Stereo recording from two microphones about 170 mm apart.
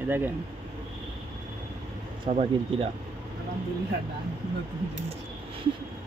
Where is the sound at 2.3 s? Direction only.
40° right (ahead or behind).